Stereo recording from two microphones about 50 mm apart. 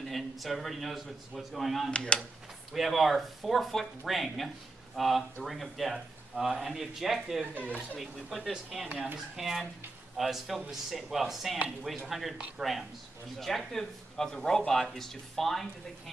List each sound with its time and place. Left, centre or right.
0.0 s a man's voice: centre
1.9 s speech: left
2.7 s a man's voice: centre